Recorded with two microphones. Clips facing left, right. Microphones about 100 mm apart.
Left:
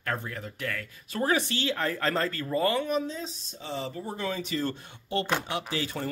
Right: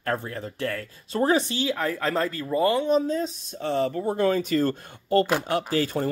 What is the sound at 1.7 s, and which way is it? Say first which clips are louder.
Speech: right 2 dB; 5° right (ahead or behind).